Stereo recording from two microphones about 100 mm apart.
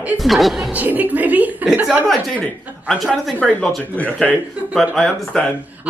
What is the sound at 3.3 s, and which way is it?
Speech, 10° left (ahead or behind).